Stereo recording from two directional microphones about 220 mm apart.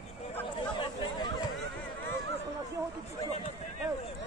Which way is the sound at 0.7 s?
20° left (ahead or behind).